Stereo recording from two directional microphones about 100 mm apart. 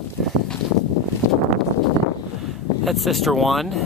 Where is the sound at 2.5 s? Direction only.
Centre (ahead or behind).